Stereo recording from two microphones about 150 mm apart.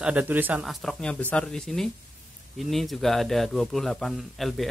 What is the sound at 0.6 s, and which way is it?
Speech, 5° left (ahead or behind).